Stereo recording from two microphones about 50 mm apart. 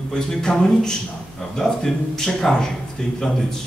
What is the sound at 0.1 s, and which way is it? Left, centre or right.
A man's voice, centre.